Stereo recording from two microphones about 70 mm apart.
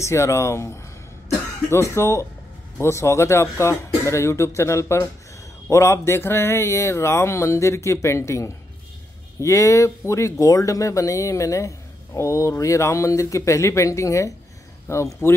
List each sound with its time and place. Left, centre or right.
0.0 s speech: left